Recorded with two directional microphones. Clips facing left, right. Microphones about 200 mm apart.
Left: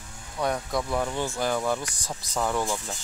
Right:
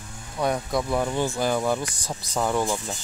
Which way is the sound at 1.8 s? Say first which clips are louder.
Right 4 dB; 25° right (ahead or behind).